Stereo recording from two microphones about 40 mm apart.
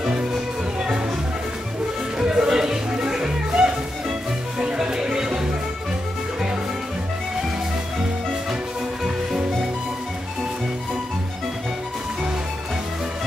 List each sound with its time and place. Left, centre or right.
2.1 s music: centre